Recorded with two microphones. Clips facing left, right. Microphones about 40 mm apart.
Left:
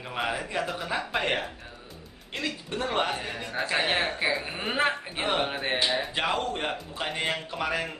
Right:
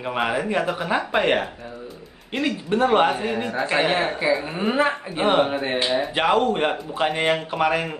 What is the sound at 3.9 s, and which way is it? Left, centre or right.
A man's voice, centre.